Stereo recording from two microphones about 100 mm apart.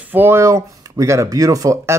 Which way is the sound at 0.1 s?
20° right (ahead or behind).